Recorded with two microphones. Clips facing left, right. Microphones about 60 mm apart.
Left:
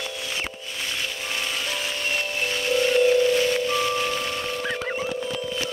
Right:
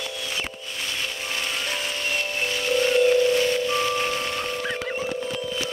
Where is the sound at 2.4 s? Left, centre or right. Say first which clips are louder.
Even; right.